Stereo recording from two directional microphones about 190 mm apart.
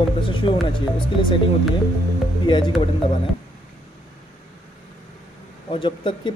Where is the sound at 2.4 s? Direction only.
25° left (ahead or behind).